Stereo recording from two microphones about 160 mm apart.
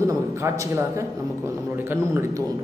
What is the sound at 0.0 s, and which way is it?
A man's voice, 20° right (ahead or behind).